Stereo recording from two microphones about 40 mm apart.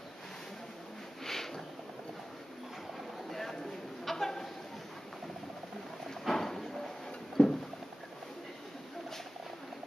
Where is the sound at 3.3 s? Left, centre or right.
Centre.